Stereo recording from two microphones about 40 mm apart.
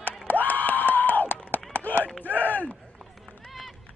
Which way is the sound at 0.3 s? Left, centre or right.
Left.